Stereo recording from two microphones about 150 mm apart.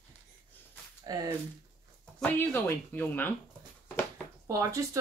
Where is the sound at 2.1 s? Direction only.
10° left (ahead or behind).